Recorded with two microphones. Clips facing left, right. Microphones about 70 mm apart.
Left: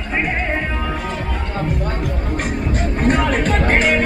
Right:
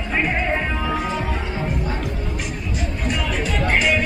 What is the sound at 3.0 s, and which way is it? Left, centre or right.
Music, left.